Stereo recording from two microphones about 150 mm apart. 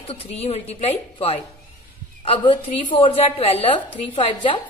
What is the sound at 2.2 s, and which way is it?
A man's voice, 35° left (ahead or behind).